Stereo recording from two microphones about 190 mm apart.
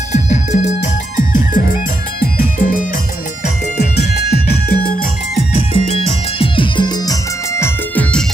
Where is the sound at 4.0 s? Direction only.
55° left (ahead or behind).